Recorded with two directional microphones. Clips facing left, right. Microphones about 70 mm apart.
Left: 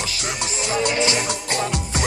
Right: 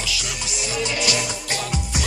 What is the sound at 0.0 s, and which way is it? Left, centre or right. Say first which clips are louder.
Music: left 2 dB; left.